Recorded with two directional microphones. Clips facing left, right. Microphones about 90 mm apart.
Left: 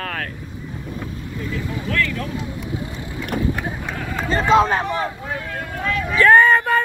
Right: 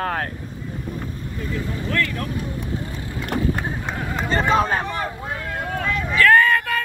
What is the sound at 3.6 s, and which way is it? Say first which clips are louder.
Speech: even; 25° right (ahead or behind).